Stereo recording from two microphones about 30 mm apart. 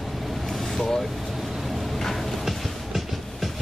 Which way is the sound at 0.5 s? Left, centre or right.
Centre.